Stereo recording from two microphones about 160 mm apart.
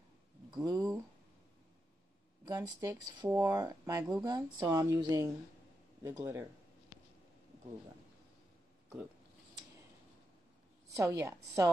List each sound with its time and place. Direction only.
0.5 s a sound: 25° right (ahead or behind)
2.4 s speech: 25° right (ahead or behind)
10.9 s speech: 20° right (ahead or behind)